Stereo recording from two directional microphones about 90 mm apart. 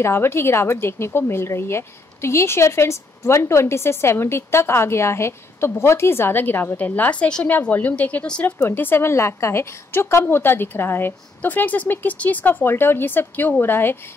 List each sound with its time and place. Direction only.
0.0 s a woman's voice: 30° left (ahead or behind)